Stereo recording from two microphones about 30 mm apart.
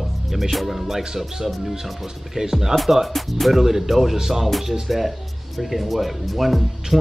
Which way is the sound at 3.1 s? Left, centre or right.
Centre.